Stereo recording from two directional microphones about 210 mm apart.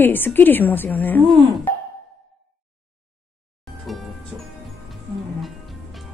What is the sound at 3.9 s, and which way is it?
Music, centre (ahead or behind).